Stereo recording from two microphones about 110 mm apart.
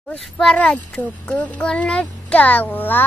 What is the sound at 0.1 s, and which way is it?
A child's voice, 5° left (ahead or behind).